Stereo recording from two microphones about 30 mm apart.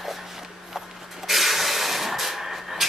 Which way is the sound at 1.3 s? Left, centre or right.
Centre.